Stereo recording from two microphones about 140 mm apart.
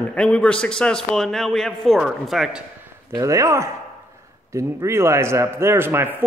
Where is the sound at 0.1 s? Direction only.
5° left (ahead or behind).